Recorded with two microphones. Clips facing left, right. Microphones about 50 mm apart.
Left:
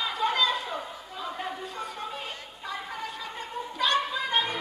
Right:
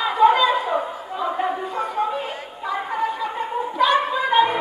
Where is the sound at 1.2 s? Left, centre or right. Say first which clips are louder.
Right 11 dB; right.